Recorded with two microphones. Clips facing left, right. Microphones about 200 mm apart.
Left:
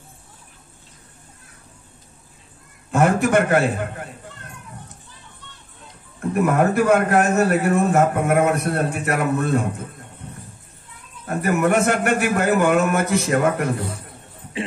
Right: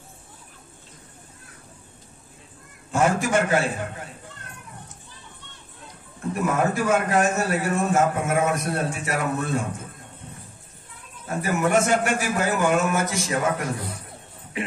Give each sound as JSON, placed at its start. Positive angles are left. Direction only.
{"t": 2.9, "sound": "a man's voice", "side_deg": 60}
{"t": 6.3, "sound": "a man's voice", "side_deg": 60}
{"t": 11.2, "sound": "a man's voice", "side_deg": 60}